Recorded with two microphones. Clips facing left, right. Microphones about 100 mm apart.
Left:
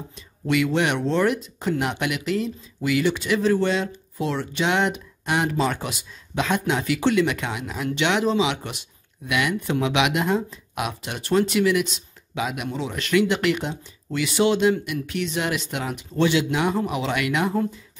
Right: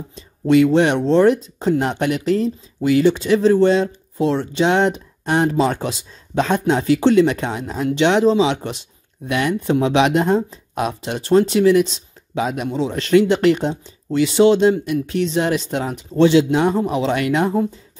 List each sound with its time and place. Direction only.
0.1 s speech: 30° right (ahead or behind)